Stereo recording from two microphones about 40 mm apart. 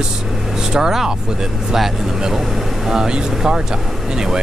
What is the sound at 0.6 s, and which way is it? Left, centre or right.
Speech, centre.